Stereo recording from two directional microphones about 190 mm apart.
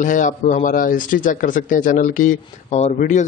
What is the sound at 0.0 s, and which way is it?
Speech, 40° left (ahead or behind).